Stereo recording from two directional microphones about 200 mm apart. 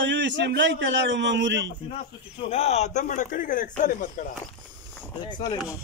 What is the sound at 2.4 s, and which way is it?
Speech, 30° left (ahead or behind).